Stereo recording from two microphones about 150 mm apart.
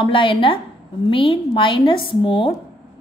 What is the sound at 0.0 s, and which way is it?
A woman's voice, 35° left (ahead or behind).